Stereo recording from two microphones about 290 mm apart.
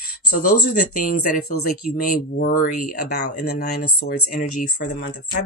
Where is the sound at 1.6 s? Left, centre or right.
Left.